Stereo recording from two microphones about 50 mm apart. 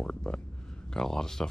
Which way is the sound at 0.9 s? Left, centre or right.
Centre.